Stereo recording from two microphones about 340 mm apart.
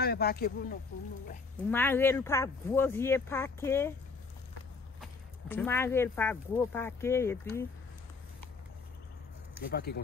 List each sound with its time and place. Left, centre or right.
0.0 s speech: left
1.7 s speech: centre
5.0 s speech: centre
9.7 s speech: left